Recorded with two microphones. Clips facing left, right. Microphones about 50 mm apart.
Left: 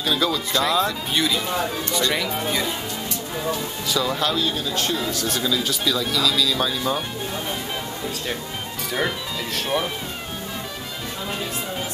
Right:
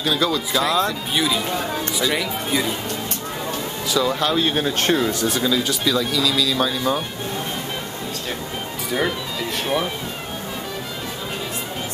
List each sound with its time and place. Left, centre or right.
0.0 s speech: centre
3.9 s speech: centre
4.4 s speech: right
5.2 s speech: centre
8.9 s speech: centre